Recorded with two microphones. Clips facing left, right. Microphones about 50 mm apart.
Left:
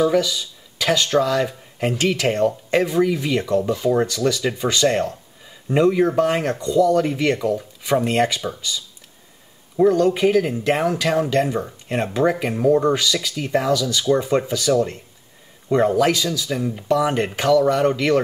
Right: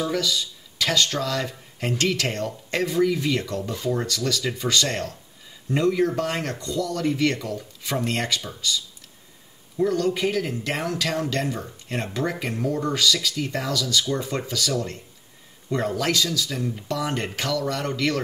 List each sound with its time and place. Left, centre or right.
0.0 s speech: centre